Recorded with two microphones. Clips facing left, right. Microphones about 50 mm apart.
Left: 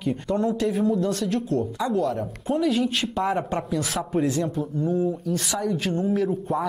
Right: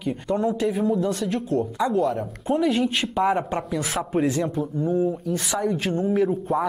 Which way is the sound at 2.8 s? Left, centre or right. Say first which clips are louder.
Right 2 dB; centre.